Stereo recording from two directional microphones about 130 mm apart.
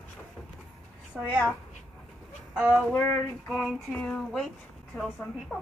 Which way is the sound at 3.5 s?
Centre (ahead or behind).